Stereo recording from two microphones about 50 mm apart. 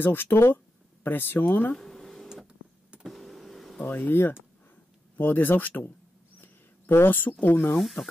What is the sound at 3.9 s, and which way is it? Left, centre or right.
Speech, left.